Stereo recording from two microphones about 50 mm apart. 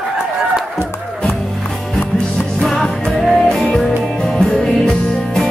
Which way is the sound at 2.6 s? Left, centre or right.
Centre.